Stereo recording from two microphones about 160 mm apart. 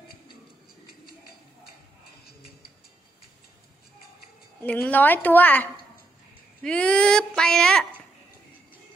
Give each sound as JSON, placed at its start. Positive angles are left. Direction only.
{"t": 1.0, "sound": "a sound", "side_deg": 75}
{"t": 2.2, "sound": "music", "side_deg": 80}
{"t": 4.6, "sound": "a woman's voice", "side_deg": 10}